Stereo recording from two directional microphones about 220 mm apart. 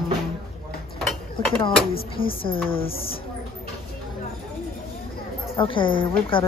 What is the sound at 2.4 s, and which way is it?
Speech, 25° left (ahead or behind).